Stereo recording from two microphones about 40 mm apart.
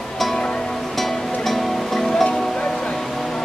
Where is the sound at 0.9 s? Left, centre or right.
Centre.